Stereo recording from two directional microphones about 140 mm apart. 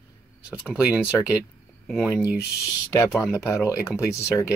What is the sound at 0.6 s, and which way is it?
Speech, 5° right (ahead or behind).